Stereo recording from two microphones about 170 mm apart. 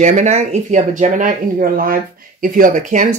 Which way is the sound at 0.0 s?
45° right (ahead or behind).